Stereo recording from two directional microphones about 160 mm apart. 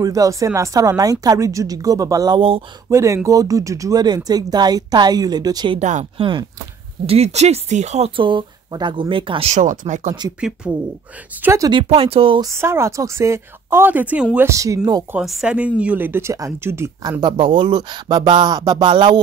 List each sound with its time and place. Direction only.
0.0 s speech: 20° right (ahead or behind)
2.9 s speech: 20° right (ahead or behind)
5.8 s speech: 50° right (ahead or behind)
6.1 s speech: 30° right (ahead or behind)
7.1 s speech: 40° right (ahead or behind)
10.6 s speech: 10° right (ahead or behind)
11.7 s speech: 35° right (ahead or behind)
12.4 s speech: 15° right (ahead or behind)
15.1 s speech: 5° right (ahead or behind); by 19.1 s 30° right (ahead or behind)